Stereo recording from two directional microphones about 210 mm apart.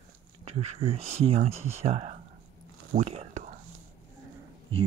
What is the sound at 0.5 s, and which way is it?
Speech, 30° right (ahead or behind).